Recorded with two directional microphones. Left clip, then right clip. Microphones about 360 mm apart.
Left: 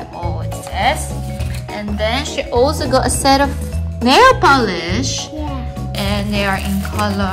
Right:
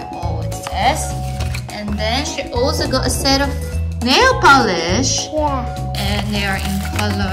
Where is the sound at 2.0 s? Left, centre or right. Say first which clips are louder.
Left 1 dB; centre.